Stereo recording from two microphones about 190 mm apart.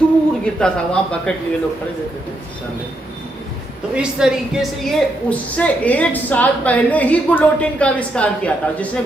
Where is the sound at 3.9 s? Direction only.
5° right (ahead or behind).